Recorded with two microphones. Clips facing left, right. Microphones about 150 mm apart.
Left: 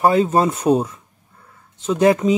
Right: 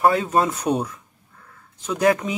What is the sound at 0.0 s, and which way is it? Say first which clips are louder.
A man's voice: left 3 dB; 25° left (ahead or behind).